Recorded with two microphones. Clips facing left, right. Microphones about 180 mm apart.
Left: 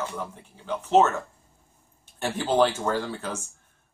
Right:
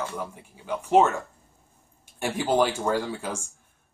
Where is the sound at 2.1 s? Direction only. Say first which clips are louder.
Even; 10° right (ahead or behind).